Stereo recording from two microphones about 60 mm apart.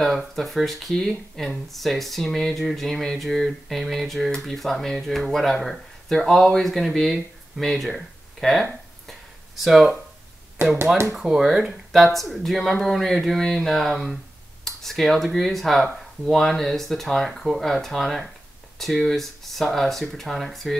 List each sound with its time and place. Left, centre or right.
0.0 s speech: centre
10.6 s speech: right
11.2 s speech: centre